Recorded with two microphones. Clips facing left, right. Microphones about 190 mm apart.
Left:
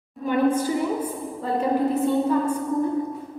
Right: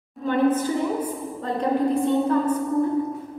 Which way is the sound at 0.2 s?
10° left (ahead or behind).